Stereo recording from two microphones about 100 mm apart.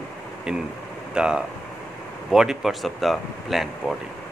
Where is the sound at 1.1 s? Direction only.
10° right (ahead or behind).